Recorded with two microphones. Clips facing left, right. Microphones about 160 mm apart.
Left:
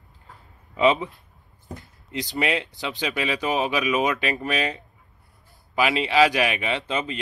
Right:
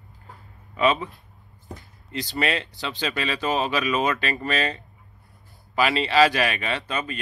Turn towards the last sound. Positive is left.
turn(degrees=20)  # may be behind; listen again after turning